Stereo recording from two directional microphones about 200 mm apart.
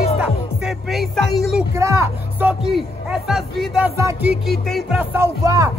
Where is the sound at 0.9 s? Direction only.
Centre (ahead or behind).